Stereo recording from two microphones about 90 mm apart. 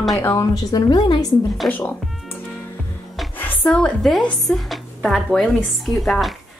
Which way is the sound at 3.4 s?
15° left (ahead or behind).